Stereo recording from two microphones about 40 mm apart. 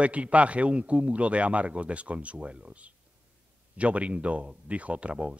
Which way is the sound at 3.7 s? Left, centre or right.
Right.